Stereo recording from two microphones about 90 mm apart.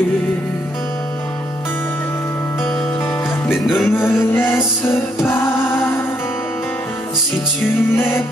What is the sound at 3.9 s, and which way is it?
Music, 25° left (ahead or behind).